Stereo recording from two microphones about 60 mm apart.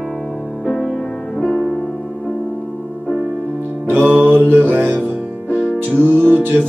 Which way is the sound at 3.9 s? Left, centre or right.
Right.